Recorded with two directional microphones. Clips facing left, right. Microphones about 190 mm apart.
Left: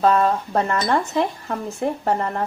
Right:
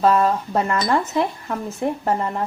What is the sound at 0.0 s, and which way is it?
Speech, 5° right (ahead or behind).